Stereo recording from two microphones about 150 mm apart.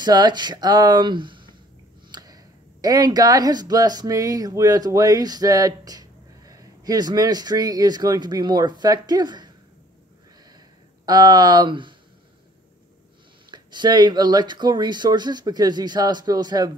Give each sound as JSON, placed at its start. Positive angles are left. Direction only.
{"t": 0.0, "sound": "speech", "side_deg": -30}
{"t": 11.1, "sound": "speech", "side_deg": -25}
{"t": 13.5, "sound": "speech", "side_deg": -30}